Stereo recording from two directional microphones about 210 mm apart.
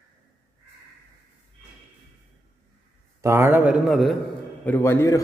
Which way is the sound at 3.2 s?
10° right (ahead or behind).